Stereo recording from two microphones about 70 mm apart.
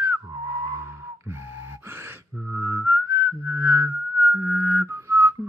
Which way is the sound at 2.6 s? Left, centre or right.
Right.